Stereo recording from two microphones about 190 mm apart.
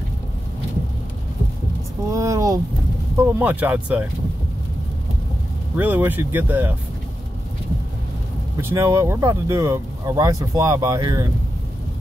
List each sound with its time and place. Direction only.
2.1 s a sound: 15° right (ahead or behind)
3.2 s speech: 10° right (ahead or behind)
5.8 s speech: 10° right (ahead or behind)
8.5 s speech: 15° right (ahead or behind)